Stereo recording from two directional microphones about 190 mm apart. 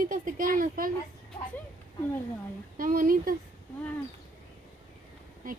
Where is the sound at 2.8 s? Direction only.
45° right (ahead or behind).